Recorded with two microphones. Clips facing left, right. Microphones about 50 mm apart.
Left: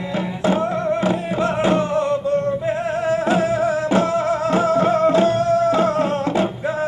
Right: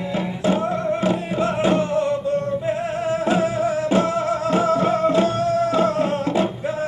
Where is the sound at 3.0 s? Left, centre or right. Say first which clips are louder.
Left 2 dB; left.